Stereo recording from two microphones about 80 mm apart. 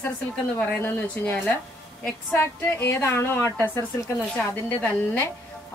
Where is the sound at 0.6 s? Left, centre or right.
Left.